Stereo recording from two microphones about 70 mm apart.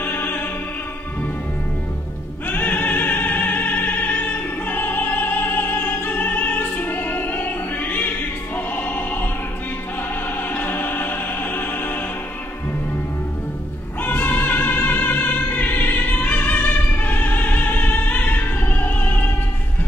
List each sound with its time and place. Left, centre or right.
0.0 s opera: left
2.4 s opera: left
8.5 s music: left
10.5 s music: left
14.0 s music: left